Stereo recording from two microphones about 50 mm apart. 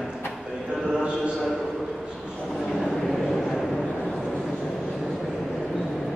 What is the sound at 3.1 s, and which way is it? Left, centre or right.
Vehicle, centre.